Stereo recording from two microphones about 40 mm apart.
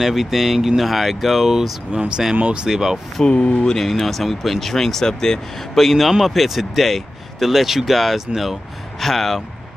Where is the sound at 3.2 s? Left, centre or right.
Left.